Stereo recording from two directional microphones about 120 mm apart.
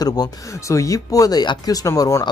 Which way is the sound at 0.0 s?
30° left (ahead or behind).